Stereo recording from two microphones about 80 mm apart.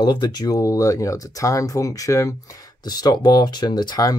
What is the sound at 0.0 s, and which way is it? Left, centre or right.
Speech, left.